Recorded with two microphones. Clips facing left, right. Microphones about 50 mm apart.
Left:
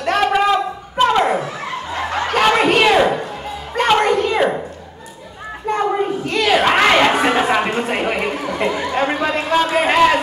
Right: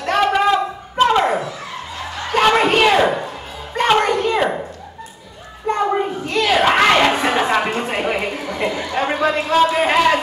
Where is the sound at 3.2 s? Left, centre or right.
Centre.